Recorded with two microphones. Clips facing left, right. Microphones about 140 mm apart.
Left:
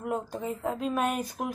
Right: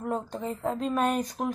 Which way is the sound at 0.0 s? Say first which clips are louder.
Right 1 dB; 10° left (ahead or behind).